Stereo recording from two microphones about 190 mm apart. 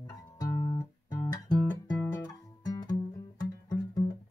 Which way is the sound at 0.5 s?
20° left (ahead or behind).